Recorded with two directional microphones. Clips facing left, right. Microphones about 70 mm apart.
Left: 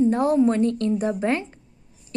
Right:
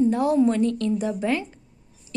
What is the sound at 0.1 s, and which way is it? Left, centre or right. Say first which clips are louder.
A woman's voice: left 1 dB; left.